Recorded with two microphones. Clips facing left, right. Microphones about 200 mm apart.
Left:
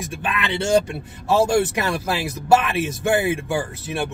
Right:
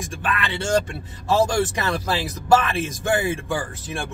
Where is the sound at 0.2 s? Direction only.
15° left (ahead or behind).